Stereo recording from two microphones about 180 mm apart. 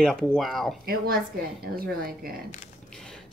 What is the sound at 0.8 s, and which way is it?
A woman's voice, 55° right (ahead or behind).